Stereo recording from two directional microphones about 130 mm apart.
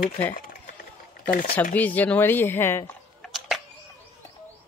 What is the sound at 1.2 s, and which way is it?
Speech, 90° left.